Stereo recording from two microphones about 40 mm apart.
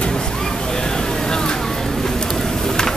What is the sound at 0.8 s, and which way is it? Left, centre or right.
Vehicle, centre.